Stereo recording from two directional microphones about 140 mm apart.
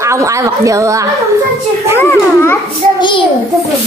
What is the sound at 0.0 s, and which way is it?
Speech, 20° right (ahead or behind).